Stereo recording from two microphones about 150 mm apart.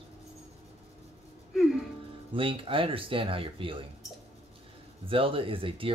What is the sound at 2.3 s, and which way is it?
Speech, 35° right (ahead or behind).